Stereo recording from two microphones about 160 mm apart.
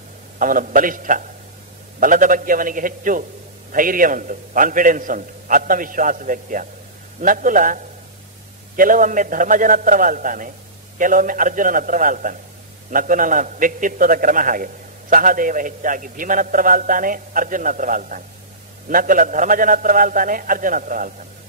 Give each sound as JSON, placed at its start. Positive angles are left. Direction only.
{"t": 0.4, "sound": "a man's voice", "side_deg": -60}